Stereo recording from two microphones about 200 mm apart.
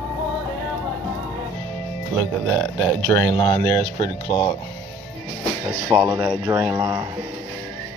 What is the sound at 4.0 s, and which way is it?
Speech, 30° left (ahead or behind).